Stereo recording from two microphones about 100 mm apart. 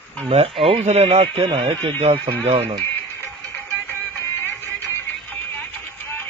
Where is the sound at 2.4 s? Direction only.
90° right.